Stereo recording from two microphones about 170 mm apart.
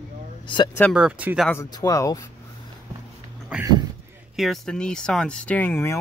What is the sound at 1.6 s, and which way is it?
Speech, 20° left (ahead or behind).